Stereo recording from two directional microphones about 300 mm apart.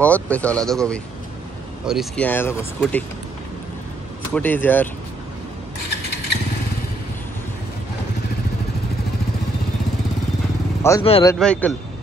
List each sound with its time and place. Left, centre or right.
0.0 s speech: centre
4.3 s speech: centre
10.8 s speech: centre
11.3 s speech: centre